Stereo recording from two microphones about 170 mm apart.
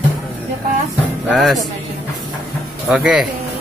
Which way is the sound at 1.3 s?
Centre (ahead or behind).